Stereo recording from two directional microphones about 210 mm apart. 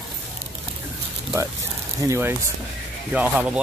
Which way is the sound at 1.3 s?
15° right (ahead or behind).